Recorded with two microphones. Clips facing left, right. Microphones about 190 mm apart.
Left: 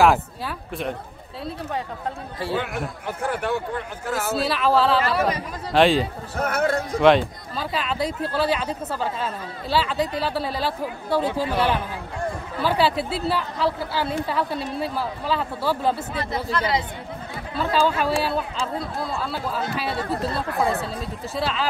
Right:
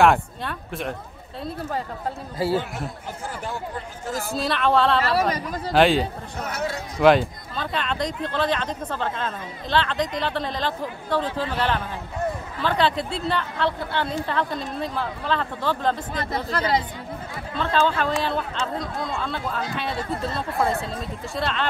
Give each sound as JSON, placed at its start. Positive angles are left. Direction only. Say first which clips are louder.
{"t": 0.0, "sound": "speech", "louder": "even", "side_deg": 0}
{"t": 2.5, "sound": "speech", "louder": "right 1 dB", "side_deg": 60}
{"t": 4.3, "sound": "speech", "louder": "left 1 dB", "side_deg": 5}
{"t": 6.4, "sound": "speech", "louder": "left 7 dB", "side_deg": 55}
{"t": 7.0, "sound": "speech", "louder": "right 1 dB", "side_deg": 0}
{"t": 16.4, "sound": "speech", "louder": "left 1 dB", "side_deg": -40}
{"t": 17.6, "sound": "speech", "louder": "left 1 dB", "side_deg": 5}